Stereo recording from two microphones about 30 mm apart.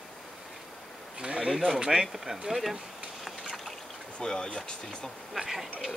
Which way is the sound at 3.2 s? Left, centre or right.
Centre.